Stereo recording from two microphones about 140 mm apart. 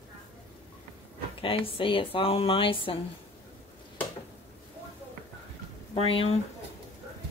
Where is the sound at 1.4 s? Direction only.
40° left (ahead or behind).